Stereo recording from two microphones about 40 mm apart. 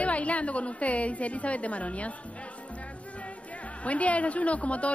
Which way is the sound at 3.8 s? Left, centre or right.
Left.